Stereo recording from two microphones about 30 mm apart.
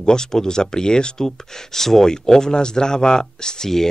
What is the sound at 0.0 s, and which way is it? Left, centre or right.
Speech, left.